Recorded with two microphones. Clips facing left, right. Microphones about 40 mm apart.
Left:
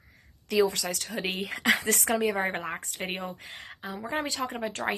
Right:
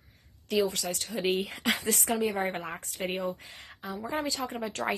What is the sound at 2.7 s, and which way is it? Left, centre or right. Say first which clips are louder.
Speech: even; left.